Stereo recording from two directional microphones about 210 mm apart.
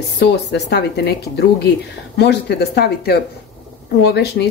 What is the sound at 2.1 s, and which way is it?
Speech, 50° left (ahead or behind).